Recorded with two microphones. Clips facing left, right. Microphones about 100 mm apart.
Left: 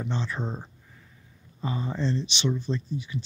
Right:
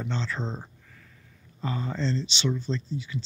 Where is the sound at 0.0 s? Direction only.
15° left (ahead or behind).